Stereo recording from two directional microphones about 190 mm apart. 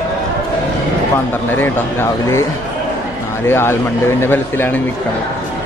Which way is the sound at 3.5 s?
10° left (ahead or behind).